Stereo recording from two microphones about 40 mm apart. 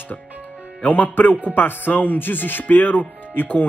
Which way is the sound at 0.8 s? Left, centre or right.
Left.